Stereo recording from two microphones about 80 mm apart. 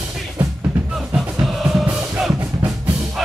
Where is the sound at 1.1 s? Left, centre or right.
Centre.